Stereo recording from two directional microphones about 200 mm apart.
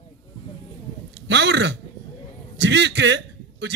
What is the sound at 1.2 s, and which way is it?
A man's voice, 60° right (ahead or behind).